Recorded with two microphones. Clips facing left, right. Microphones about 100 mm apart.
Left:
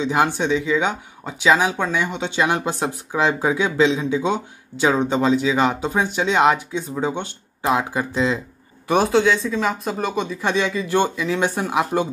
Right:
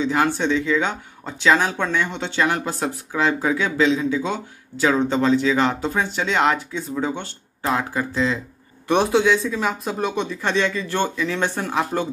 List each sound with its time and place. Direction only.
0.0 s speech: 20° left (ahead or behind)
8.8 s speech: centre (ahead or behind)